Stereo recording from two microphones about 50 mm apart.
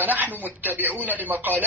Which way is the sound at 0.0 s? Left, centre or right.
Right.